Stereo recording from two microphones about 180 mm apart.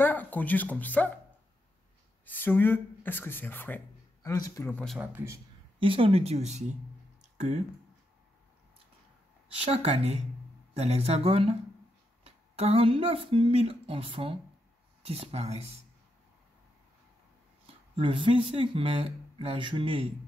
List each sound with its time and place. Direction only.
0.0 s speech: 10° left (ahead or behind)
2.2 s speech: 10° left (ahead or behind)
4.8 s speech: 5° right (ahead or behind)
5.8 s speech: 30° right (ahead or behind)
9.5 s speech: 35° right (ahead or behind)
17.9 s speech: 30° right (ahead or behind)